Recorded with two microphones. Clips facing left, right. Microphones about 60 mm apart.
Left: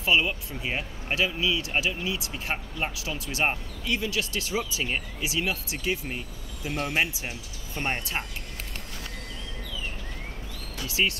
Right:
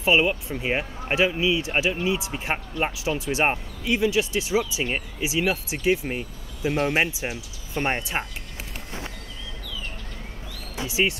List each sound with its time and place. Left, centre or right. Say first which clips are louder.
0.0 s speech: right 4 dB; right
10.8 s speech: right 3 dB; right